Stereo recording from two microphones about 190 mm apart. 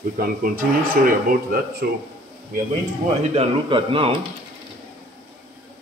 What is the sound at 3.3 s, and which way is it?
Speech, 30° right (ahead or behind).